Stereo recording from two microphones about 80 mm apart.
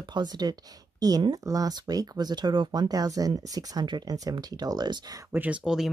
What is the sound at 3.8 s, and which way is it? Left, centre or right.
Speech, right.